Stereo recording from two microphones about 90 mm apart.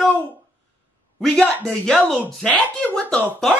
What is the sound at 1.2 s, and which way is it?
Speech, 5° left (ahead or behind).